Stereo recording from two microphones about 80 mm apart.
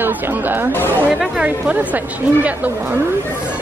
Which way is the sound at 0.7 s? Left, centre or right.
Left.